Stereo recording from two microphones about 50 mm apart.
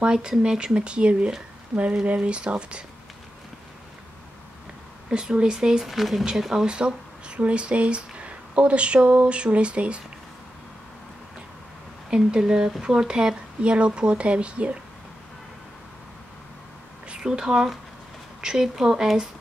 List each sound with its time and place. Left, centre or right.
0.0 s speech: centre
5.1 s speech: centre
12.1 s speech: centre
17.2 s speech: centre